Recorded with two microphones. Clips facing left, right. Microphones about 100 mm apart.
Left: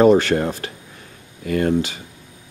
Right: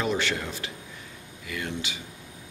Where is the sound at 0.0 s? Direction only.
45° left (ahead or behind).